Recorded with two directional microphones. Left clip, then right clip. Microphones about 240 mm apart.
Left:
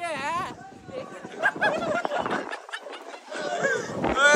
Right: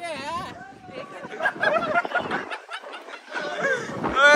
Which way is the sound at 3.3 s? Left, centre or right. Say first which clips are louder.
Right 1 dB; centre.